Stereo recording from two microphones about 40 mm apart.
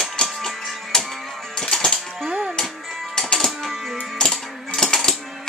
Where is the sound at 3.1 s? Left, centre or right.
Centre.